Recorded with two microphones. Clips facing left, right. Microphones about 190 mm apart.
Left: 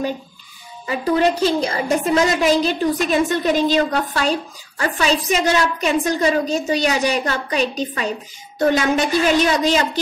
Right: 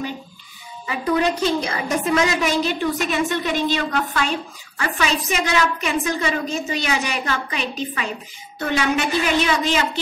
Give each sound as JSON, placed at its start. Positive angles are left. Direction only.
{"t": 0.8, "sound": "a woman's voice", "side_deg": 35}